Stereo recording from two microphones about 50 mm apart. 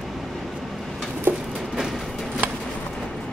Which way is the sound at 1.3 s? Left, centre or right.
Right.